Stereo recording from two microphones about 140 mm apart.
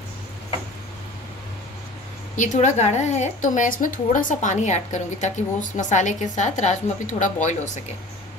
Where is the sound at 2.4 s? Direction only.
60° left (ahead or behind).